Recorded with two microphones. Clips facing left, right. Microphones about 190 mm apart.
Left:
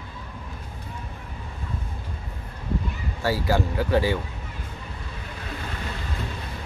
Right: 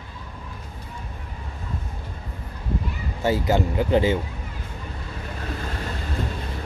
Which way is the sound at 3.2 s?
20° right (ahead or behind).